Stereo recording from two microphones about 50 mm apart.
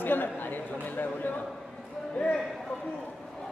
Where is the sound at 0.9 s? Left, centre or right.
Left.